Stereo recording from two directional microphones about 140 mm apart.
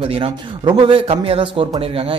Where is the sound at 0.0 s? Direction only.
40° right (ahead or behind).